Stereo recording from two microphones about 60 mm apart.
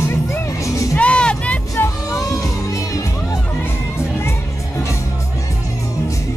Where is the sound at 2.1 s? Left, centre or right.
Left.